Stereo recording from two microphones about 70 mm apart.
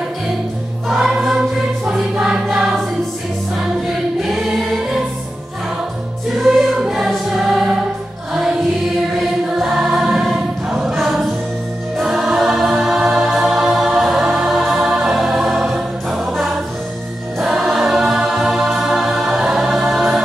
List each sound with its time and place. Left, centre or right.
0.8 s choir: centre
6.8 s choir: centre
7.4 s music: centre
9.6 s choir: centre
17.4 s music: centre